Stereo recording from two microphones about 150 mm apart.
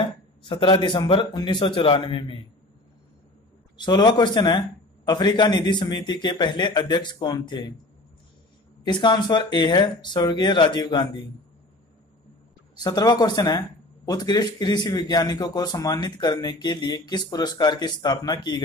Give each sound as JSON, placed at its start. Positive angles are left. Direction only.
{"t": 0.4, "sound": "a man's voice", "side_deg": 30}
{"t": 3.7, "sound": "speech", "side_deg": 30}
{"t": 8.8, "sound": "speech", "side_deg": 30}
{"t": 12.7, "sound": "speech", "side_deg": 25}